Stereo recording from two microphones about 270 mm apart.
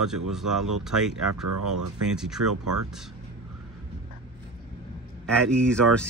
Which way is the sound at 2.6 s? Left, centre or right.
Right.